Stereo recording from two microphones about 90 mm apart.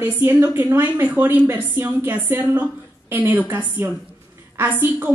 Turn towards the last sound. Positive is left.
turn(degrees=-25)  # may be behind; listen again after turning